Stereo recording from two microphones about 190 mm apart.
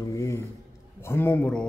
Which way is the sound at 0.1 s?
15° left (ahead or behind).